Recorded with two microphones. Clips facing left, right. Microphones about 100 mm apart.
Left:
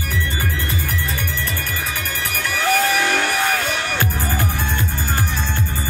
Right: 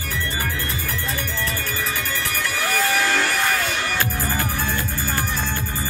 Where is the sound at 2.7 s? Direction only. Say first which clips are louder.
Left 4 dB; 15° left (ahead or behind).